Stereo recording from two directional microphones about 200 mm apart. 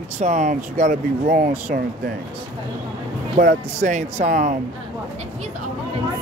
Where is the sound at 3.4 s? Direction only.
40° right (ahead or behind).